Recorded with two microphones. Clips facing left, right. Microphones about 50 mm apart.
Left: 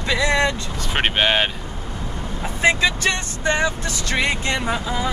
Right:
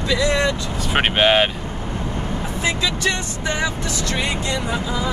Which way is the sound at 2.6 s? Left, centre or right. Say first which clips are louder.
Left 4 dB; left.